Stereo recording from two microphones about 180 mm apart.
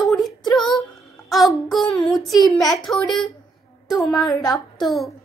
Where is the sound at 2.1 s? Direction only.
Centre (ahead or behind).